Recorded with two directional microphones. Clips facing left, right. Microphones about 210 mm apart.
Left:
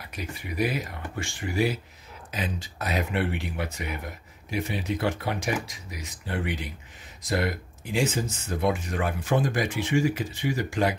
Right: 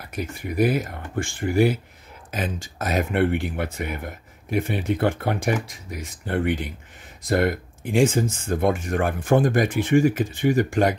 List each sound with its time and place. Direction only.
0.1 s speech: 50° right (ahead or behind)